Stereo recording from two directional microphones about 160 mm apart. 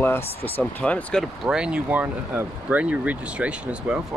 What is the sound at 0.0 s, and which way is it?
Speech, 15° left (ahead or behind).